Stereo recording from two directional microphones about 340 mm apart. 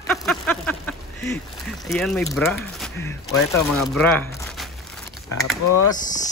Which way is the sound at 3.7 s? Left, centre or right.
Centre.